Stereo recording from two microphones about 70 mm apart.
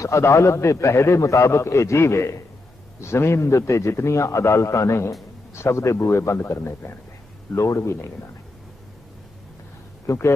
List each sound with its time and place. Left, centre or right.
0.0 s a man's voice: left
7.5 s a man's voice: left
10.0 s speech: left